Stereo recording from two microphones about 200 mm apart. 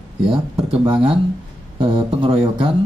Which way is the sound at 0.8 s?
25° right (ahead or behind).